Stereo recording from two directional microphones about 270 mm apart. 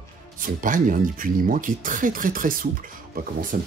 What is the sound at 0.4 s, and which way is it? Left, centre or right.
Speech, right.